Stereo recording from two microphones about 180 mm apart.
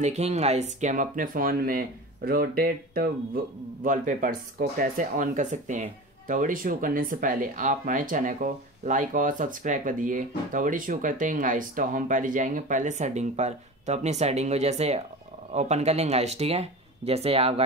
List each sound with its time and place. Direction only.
0.0 s speech: 40° right (ahead or behind)